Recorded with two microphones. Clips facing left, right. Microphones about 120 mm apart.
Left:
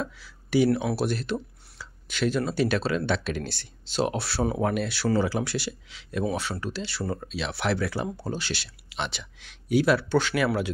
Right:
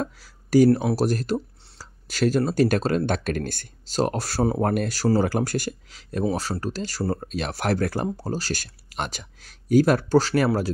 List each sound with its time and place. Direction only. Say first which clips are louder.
0.0 s speech: right 3 dB; 40° right (ahead or behind)